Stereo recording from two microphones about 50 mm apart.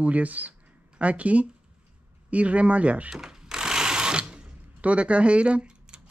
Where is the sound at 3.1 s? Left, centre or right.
Centre.